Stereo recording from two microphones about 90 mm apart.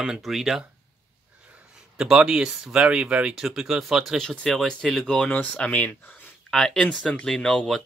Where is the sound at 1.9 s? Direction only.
10° right (ahead or behind); by 6.3 s 20° left (ahead or behind).